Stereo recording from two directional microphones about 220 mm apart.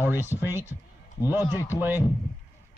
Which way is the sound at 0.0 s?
10° right (ahead or behind).